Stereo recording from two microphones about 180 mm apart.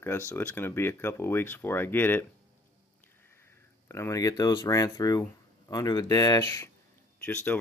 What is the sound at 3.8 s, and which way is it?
Speech, 15° left (ahead or behind).